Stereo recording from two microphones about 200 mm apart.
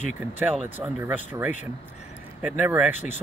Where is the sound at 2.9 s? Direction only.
35° left (ahead or behind).